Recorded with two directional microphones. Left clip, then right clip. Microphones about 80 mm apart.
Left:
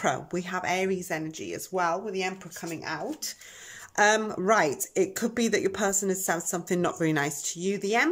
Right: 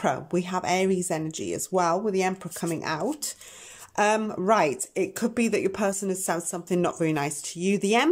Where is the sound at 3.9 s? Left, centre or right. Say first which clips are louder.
Left 1 dB; centre.